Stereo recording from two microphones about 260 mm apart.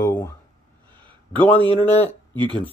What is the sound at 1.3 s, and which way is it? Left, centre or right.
Speech, centre.